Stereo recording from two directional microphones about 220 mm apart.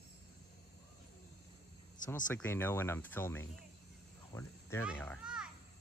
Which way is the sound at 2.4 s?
10° left (ahead or behind).